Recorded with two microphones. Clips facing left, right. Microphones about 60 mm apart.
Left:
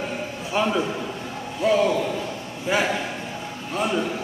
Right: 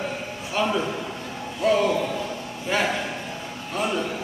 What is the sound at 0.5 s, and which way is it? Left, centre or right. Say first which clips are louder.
A man's voice: left 1 dB; centre.